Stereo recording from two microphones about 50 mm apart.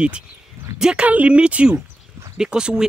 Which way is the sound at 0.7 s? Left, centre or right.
Centre.